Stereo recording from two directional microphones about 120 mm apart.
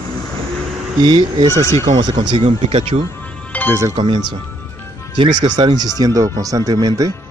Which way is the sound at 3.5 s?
10° left (ahead or behind).